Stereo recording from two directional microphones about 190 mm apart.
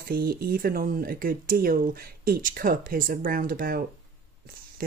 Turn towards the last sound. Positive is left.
turn(degrees=-50)  # may be behind; listen again after turning